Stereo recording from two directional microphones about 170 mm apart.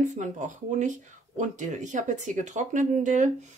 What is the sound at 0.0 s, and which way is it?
Speech, 45° right (ahead or behind).